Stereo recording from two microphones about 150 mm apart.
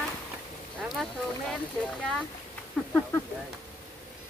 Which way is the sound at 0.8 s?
Centre (ahead or behind).